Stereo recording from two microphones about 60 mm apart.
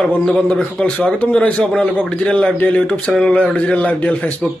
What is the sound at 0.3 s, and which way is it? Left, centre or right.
A man's voice, centre.